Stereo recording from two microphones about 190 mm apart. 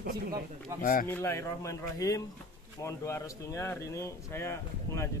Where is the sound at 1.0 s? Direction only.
10° left (ahead or behind).